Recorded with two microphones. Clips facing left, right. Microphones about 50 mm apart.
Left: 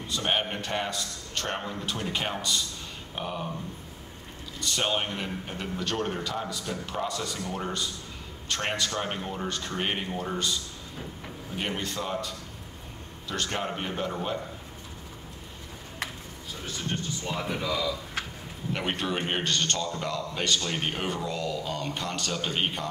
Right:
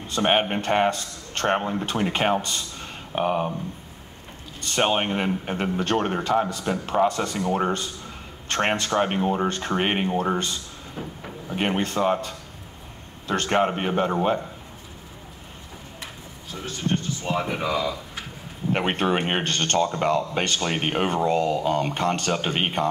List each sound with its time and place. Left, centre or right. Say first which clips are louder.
0.1 s speech: right 7 dB; right
4.6 s speech: right 6 dB; right
17.3 s speech: right 6 dB; right